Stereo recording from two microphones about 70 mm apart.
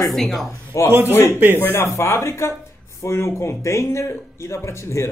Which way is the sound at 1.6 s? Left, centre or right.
Left.